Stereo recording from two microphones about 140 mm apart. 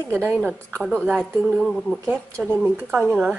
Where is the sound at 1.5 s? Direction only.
5° left (ahead or behind).